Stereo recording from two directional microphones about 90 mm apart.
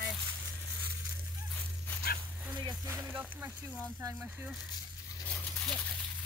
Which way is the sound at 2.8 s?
25° right (ahead or behind).